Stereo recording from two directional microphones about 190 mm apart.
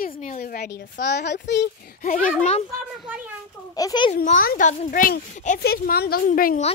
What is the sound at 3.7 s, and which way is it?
Speech, 20° left (ahead or behind).